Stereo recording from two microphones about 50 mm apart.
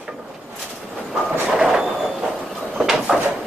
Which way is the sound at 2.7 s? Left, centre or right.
Centre.